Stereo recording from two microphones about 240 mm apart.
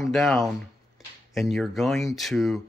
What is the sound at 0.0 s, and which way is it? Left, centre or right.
Speech, centre.